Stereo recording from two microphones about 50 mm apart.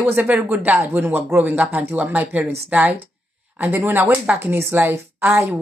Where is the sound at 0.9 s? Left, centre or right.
Right.